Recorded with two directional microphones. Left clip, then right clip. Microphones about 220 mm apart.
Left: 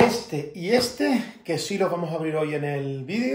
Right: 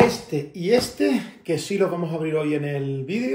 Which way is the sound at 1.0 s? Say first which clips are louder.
Right 2 dB; 45° left (ahead or behind).